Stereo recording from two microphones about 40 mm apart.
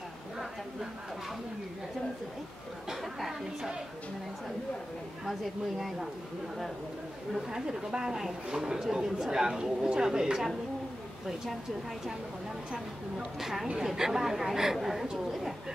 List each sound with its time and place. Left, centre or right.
2.9 s a woman's voice: centre
5.2 s a woman's voice: centre
7.6 s speech: centre
13.4 s speech: centre